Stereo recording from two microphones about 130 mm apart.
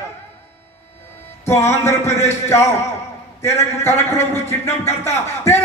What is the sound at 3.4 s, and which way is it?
A man's voice, 20° left (ahead or behind).